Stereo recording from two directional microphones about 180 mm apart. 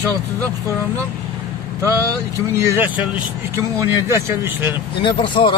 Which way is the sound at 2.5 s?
10° right (ahead or behind).